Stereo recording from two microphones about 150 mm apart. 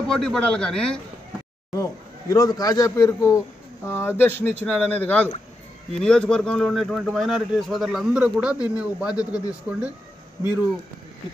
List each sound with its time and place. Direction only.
0.1 s speech: 5° left (ahead or behind)
1.8 s a man's voice: 25° left (ahead or behind); by 9.9 s 5° right (ahead or behind)